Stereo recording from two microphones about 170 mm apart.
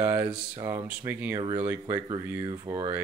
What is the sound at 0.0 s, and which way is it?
Speech, 15° right (ahead or behind).